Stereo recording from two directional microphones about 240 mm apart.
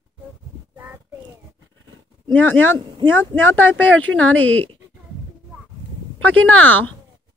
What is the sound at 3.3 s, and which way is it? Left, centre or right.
Speech, centre.